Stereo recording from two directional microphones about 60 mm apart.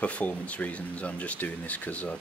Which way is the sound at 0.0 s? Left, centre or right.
Left.